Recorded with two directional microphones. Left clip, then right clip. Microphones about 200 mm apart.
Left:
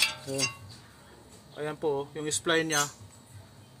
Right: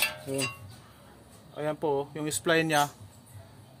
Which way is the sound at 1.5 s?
45° right (ahead or behind).